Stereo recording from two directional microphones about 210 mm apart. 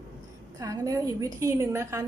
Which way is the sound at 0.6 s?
15° right (ahead or behind).